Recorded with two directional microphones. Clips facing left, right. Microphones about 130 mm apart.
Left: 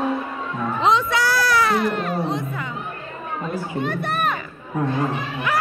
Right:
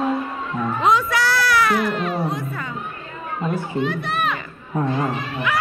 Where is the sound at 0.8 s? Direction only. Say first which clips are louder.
Even; 25° left (ahead or behind).